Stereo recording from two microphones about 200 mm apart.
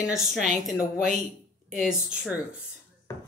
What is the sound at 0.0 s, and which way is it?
Speech, centre (ahead or behind).